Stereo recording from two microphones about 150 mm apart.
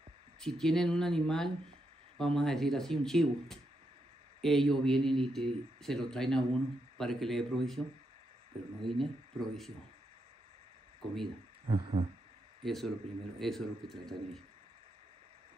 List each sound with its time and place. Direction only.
0.4 s speech: 5° left (ahead or behind)
8.8 s speech: centre (ahead or behind)
11.7 s a sound: 35° right (ahead or behind)
12.6 s speech: centre (ahead or behind)